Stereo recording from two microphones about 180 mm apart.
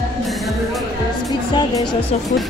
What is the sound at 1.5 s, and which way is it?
Speech, 25° left (ahead or behind).